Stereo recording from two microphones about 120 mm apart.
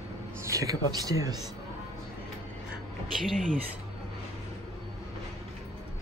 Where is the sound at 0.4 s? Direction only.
25° right (ahead or behind).